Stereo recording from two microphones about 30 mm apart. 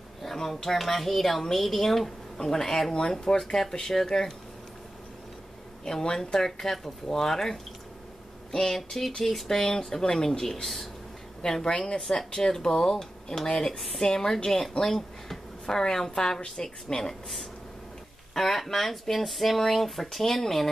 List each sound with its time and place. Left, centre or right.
0.2 s a sound: centre
0.7 s speech: centre
5.9 s speech: left
11.4 s a woman's voice: left
12.4 s a woman's voice: left
18.3 s speech: centre